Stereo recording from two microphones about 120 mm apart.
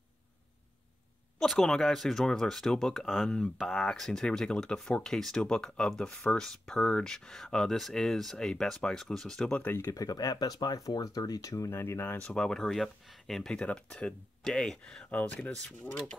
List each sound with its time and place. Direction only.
1.4 s speech: 5° left (ahead or behind)
9.8 s speech: 25° left (ahead or behind)